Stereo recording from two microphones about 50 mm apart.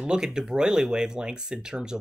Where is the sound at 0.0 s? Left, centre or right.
Centre.